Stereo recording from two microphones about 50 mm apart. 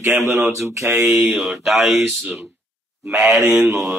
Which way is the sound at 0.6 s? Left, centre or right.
Right.